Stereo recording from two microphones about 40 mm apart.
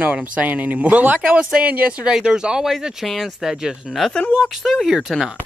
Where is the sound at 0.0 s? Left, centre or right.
Right.